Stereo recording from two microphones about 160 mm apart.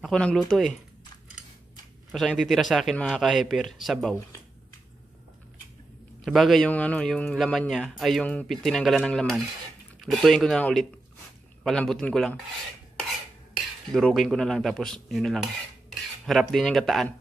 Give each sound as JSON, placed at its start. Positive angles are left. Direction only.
{"t": 0.0, "sound": "a man's voice", "side_deg": 5}
{"t": 2.1, "sound": "a man's voice", "side_deg": 0}
{"t": 6.2, "sound": "a man's voice", "side_deg": 0}
{"t": 13.9, "sound": "a man's voice", "side_deg": 0}